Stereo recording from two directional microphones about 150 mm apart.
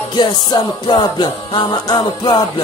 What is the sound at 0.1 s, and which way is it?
Music, 30° left (ahead or behind).